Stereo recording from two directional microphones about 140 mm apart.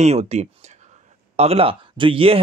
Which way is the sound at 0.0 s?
50° right (ahead or behind).